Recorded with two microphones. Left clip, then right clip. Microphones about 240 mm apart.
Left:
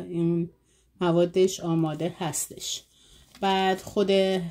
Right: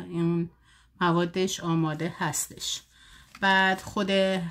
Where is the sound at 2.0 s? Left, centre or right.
Right.